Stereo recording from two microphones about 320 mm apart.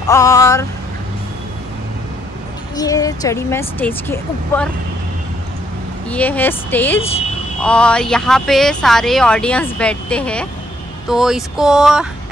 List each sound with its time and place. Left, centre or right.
0.0 s speech: centre
2.7 s speech: centre
6.0 s speech: centre
7.0 s speech: centre
7.6 s speech: centre